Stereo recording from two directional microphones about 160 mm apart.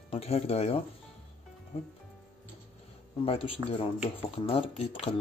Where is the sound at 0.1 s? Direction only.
40° left (ahead or behind).